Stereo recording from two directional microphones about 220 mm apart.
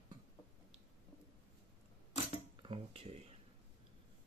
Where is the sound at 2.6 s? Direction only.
25° right (ahead or behind).